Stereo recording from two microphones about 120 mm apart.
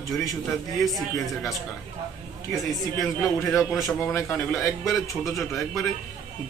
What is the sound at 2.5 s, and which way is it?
Speech, centre (ahead or behind).